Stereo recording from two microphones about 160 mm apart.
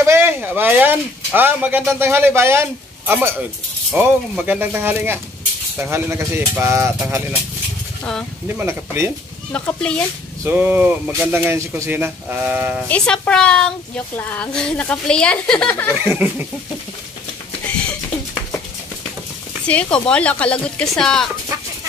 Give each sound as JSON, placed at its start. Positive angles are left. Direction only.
{"t": 0.0, "sound": "speech", "side_deg": -15}
{"t": 8.0, "sound": "speech", "side_deg": 5}
{"t": 8.5, "sound": "speech", "side_deg": -15}
{"t": 9.5, "sound": "speech", "side_deg": 5}
{"t": 10.4, "sound": "speech", "side_deg": -10}
{"t": 12.8, "sound": "speech", "side_deg": 5}
{"t": 16.0, "sound": "speech", "side_deg": -10}
{"t": 19.6, "sound": "speech", "side_deg": 10}